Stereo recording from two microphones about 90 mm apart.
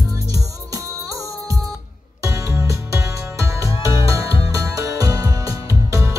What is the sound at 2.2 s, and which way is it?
Music, 30° right (ahead or behind).